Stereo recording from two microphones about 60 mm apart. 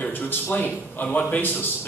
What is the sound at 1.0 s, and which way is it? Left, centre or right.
Speech, left.